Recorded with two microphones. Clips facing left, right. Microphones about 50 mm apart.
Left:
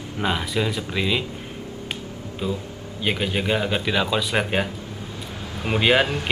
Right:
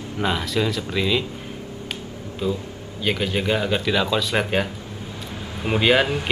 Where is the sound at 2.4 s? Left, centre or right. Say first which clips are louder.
Right 2 dB; centre.